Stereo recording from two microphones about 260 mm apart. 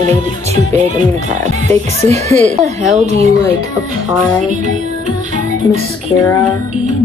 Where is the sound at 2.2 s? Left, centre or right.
Right.